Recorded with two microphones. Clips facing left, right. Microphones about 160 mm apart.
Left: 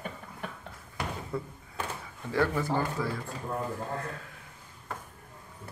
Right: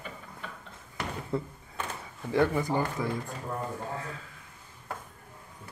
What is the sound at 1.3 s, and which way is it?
Speech, 25° right (ahead or behind).